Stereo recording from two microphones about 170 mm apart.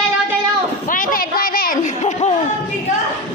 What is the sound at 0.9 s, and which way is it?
Chatter, 50° left (ahead or behind).